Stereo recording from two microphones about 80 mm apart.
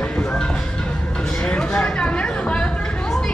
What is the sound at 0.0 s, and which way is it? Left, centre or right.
Music, centre.